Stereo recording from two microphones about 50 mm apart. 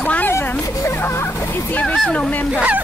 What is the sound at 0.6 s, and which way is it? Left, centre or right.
Speech, left.